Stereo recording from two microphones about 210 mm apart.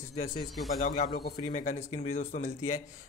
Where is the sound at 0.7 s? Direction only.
40° left (ahead or behind).